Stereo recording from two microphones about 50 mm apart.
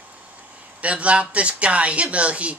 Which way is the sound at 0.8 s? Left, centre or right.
Right.